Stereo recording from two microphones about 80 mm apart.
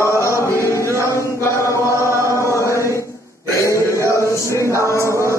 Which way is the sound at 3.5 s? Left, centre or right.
Left.